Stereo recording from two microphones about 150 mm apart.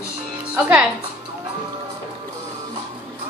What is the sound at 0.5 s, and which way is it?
Music, 5° right (ahead or behind).